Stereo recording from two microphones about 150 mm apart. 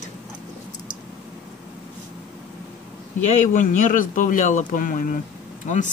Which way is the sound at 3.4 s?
55° left (ahead or behind).